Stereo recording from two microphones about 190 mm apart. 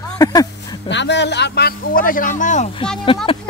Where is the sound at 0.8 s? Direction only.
65° left (ahead or behind); by 2.7 s 40° left (ahead or behind).